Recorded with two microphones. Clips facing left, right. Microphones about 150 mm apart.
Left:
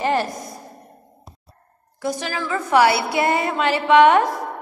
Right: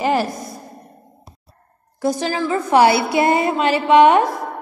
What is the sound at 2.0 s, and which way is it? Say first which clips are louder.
A woman's voice: right 5 dB; 35° right (ahead or behind).